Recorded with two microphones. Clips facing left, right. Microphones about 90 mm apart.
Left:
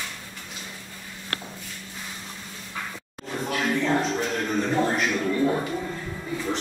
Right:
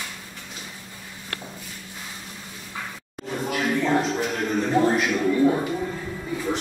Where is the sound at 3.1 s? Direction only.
5° right (ahead or behind).